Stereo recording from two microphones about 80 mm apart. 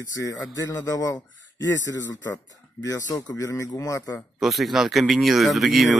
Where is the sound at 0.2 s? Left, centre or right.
Left.